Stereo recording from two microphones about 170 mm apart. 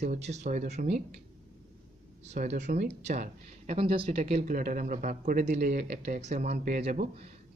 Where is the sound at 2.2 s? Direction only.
40° right (ahead or behind).